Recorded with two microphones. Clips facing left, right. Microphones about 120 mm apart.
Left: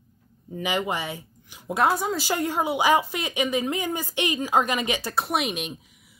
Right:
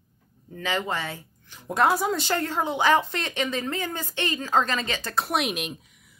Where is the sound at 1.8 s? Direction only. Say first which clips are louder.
Right 1 dB; centre (ahead or behind).